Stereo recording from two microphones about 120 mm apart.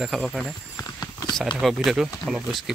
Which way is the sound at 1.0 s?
35° left (ahead or behind).